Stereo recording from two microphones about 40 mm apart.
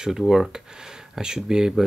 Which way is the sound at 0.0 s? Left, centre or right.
Centre.